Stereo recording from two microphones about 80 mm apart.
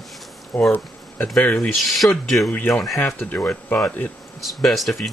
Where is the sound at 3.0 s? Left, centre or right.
Left.